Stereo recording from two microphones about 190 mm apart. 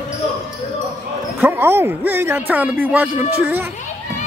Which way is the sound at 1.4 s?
10° right (ahead or behind).